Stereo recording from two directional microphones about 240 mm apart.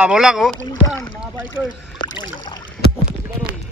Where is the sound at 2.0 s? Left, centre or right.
Centre.